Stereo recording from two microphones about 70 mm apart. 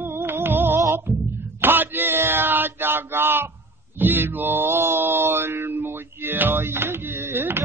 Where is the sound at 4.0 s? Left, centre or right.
Right.